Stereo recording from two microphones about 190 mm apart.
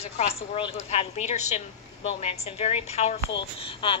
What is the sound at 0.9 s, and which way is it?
A woman's voice, 35° left (ahead or behind).